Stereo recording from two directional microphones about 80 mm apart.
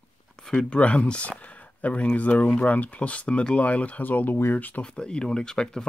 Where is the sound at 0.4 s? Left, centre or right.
Centre.